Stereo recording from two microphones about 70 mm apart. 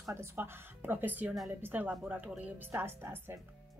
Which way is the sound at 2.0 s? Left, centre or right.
Centre.